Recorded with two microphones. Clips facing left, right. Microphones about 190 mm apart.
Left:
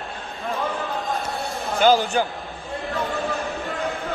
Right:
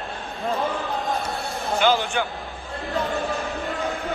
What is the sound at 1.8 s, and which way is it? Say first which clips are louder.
Speech: left 4 dB; 40° left (ahead or behind).